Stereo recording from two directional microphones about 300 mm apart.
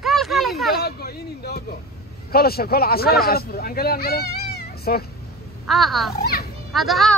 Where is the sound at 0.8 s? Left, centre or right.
Left.